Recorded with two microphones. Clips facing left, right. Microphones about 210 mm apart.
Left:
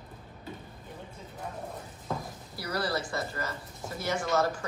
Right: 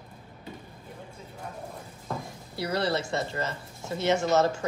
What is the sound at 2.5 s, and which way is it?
Speech, 25° right (ahead or behind).